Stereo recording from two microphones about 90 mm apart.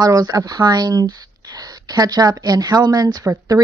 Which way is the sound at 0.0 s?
45° right (ahead or behind).